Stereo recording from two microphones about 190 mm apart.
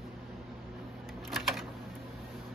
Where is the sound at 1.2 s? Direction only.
Centre (ahead or behind).